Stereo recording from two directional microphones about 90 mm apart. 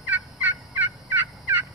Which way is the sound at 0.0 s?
20° right (ahead or behind).